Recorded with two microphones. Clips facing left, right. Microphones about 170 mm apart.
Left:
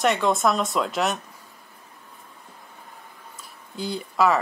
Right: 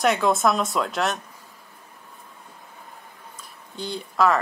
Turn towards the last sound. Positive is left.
turn(degrees=5)  # may be behind; listen again after turning